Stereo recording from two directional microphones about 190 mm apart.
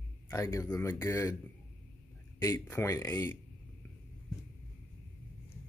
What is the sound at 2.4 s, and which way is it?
Speech, 15° left (ahead or behind).